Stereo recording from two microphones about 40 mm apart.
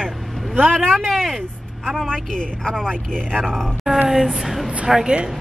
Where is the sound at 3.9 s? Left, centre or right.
Centre.